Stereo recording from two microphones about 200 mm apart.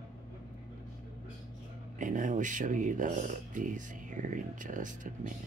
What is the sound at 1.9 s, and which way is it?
Speech, 40° right (ahead or behind).